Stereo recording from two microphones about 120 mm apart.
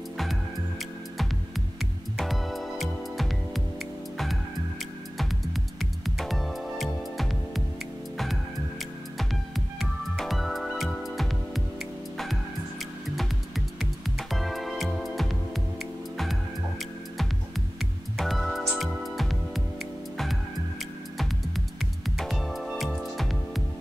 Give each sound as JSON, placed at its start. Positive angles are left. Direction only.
{"t": 0.2, "sound": "music", "side_deg": 0}
{"t": 5.2, "sound": "music", "side_deg": 0}
{"t": 9.2, "sound": "music", "side_deg": 0}
{"t": 13.7, "sound": "music", "side_deg": 0}
{"t": 18.1, "sound": "music", "side_deg": 0}
{"t": 22.2, "sound": "music", "side_deg": 0}